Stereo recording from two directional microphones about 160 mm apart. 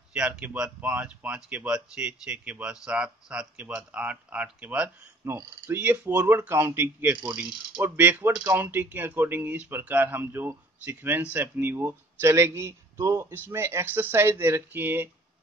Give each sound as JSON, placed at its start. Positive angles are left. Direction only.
{"t": 0.1, "sound": "speech", "side_deg": -5}